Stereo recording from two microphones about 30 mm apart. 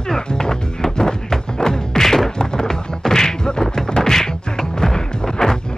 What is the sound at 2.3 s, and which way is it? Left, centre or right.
Music, left.